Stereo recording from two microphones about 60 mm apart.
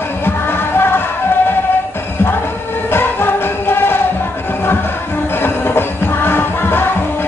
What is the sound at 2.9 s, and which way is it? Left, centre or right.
Music, left.